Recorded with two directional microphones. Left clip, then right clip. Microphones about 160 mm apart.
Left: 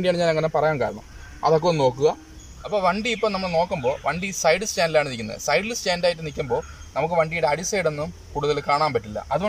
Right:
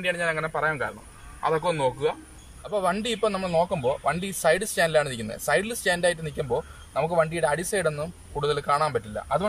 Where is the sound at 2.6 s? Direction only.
5° left (ahead or behind).